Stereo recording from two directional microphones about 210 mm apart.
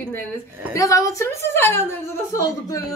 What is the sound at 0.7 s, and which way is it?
A woman's voice, 15° left (ahead or behind).